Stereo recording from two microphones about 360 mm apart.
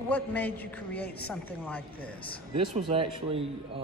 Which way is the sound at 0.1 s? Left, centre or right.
Centre.